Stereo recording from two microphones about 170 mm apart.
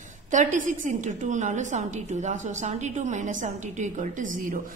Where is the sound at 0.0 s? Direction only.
45° right (ahead or behind).